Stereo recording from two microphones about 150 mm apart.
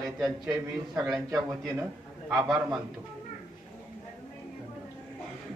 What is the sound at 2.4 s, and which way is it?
Speech, 20° right (ahead or behind).